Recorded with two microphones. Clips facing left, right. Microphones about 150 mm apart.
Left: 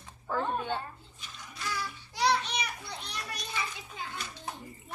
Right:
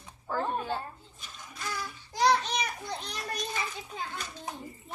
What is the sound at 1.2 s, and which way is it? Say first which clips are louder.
Children playing: even; 45° right (ahead or behind).